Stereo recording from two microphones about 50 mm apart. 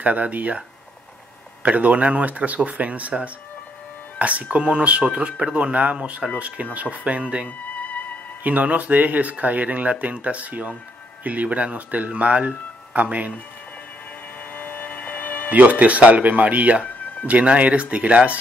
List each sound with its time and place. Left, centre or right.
0.0 s speech: right
1.6 s speech: right
7.4 s music: left
8.5 s speech: right
14.5 s a sound: left
15.5 s speech: right
16.8 s music: left
17.3 s speech: right